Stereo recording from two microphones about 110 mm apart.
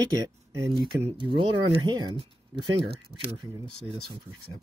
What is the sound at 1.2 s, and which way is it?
Speech, 50° right (ahead or behind).